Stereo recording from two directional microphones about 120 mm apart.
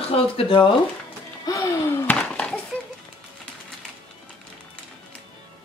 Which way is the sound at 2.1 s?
10° left (ahead or behind).